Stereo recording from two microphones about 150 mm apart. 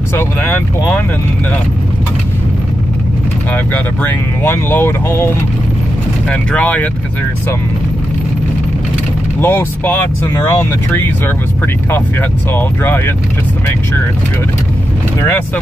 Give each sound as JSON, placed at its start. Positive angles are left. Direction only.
{"t": 0.1, "sound": "speech", "side_deg": 15}
{"t": 3.5, "sound": "speech", "side_deg": 10}
{"t": 6.3, "sound": "speech", "side_deg": 10}
{"t": 9.4, "sound": "speech", "side_deg": 15}
{"t": 15.2, "sound": "speech", "side_deg": 10}